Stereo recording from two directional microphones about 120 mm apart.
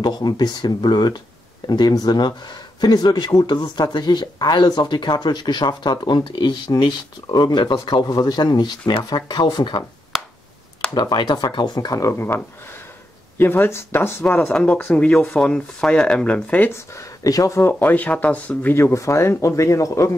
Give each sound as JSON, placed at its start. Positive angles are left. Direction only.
{"t": 0.0, "sound": "speech", "side_deg": 35}
{"t": 11.0, "sound": "speech", "side_deg": 35}
{"t": 13.4, "sound": "speech", "side_deg": 20}